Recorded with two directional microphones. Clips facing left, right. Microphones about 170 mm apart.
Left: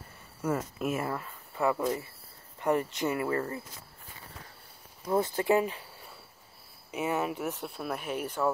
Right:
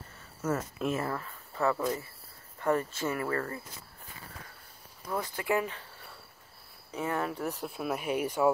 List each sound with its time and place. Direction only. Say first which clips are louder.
0.4 s speech: left 1 dB; 10° left (ahead or behind)
5.1 s speech: left 5 dB; 25° left (ahead or behind)
6.9 s speech: left 2 dB; 10° left (ahead or behind); by 8.5 s 10° right (ahead or behind)